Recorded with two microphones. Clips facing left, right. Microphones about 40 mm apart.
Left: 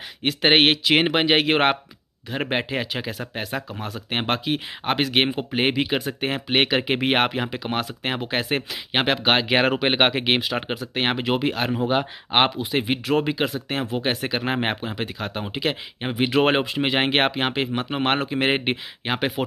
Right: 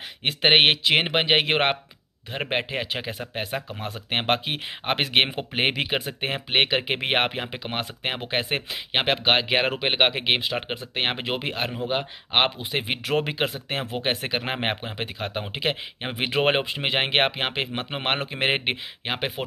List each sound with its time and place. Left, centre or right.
0.2 s speech: right
0.5 s a man's voice: centre
2.9 s a man's voice: right
6.2 s a man's voice: centre
7.5 s a man's voice: centre
9.2 s speech: centre
10.7 s a man's voice: centre
11.9 s speech: centre
12.4 s a man's voice: centre
19.0 s speech: centre